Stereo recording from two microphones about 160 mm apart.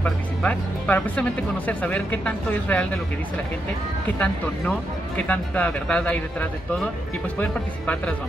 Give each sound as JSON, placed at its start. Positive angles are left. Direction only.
{"t": 0.0, "sound": "speech", "side_deg": 10}
{"t": 4.2, "sound": "speech", "side_deg": 10}